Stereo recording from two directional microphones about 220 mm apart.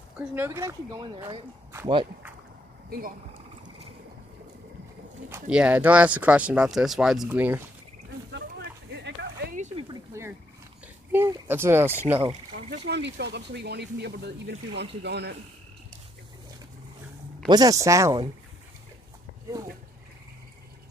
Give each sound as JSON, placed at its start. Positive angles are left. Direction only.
{"t": 0.2, "sound": "speech", "side_deg": -10}
{"t": 5.3, "sound": "speech", "side_deg": -5}
{"t": 8.3, "sound": "a sound", "side_deg": -50}
{"t": 10.1, "sound": "a sound", "side_deg": -15}
{"t": 11.1, "sound": "speech", "side_deg": -10}
{"t": 12.6, "sound": "speech", "side_deg": -40}
{"t": 17.5, "sound": "speech", "side_deg": -15}